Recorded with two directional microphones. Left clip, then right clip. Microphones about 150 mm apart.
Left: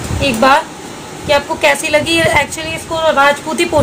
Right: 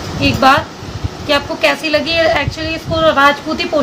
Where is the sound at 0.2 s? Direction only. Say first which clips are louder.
Even; 55° left (ahead or behind).